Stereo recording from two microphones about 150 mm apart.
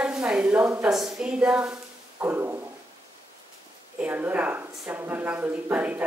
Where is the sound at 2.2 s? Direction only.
15° right (ahead or behind).